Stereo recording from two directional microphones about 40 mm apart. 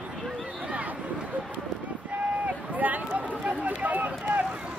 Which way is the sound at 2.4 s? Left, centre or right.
Right.